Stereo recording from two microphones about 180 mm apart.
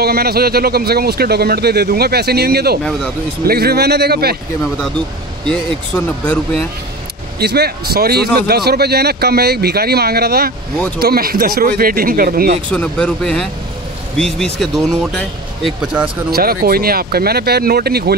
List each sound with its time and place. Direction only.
0.0 s speech: 60° right (ahead or behind)
5.5 s speech: 10° left (ahead or behind)
7.3 s speech: 65° right (ahead or behind)
12.7 s speech: 5° left (ahead or behind)
16.3 s speech: 60° right (ahead or behind)